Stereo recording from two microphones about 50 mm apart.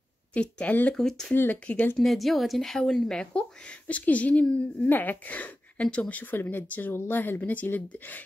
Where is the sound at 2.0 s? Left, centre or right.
Centre.